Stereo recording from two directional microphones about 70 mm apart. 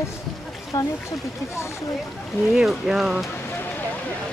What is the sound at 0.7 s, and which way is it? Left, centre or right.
Speech, left.